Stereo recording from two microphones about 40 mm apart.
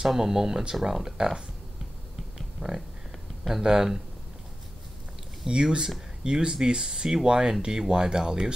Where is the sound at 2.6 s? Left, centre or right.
Centre.